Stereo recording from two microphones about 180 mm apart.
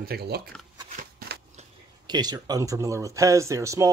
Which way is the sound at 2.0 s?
20° right (ahead or behind).